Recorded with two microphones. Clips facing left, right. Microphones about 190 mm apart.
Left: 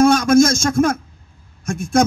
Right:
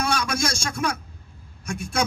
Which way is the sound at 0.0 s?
45° left (ahead or behind).